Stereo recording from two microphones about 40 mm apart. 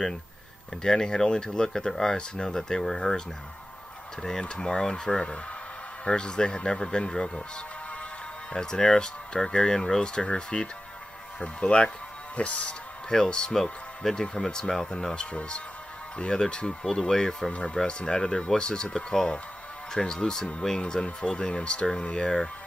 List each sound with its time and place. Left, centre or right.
0.8 s speech: centre
8.5 s speech: centre; by 12.7 s left
13.1 s speech: centre
15.1 s speech: left